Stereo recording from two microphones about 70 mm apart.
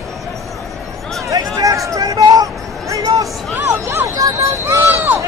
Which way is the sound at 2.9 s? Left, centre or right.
Right.